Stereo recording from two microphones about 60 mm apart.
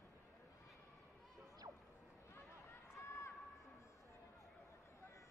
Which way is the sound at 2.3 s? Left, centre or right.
Left.